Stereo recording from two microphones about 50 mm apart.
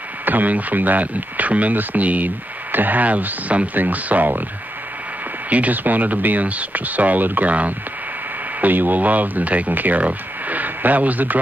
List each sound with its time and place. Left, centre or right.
0.2 s speech: right
5.5 s speech: right